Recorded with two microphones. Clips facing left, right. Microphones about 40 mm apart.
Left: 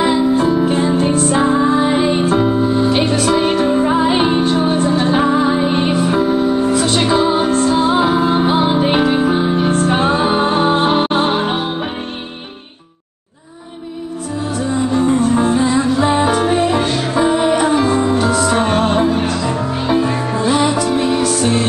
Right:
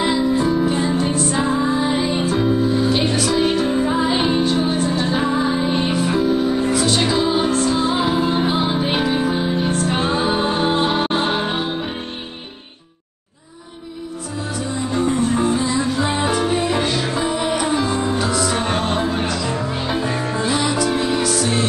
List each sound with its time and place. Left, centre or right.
0.1 s music: left
15.0 s music: left
20.9 s music: left
21.2 s music: left